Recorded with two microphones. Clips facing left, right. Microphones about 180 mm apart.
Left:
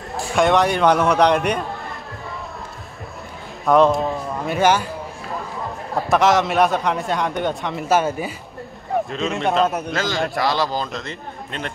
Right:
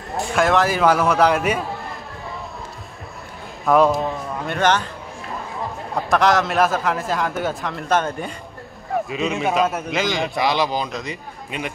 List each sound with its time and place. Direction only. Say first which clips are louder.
0.1 s a man's voice: left 1 dB; centre (ahead or behind)
3.6 s a man's voice: left 1 dB; centre (ahead or behind)
5.9 s a man's voice: left 1 dB; centre (ahead or behind)
9.9 s speech: even; 15° right (ahead or behind)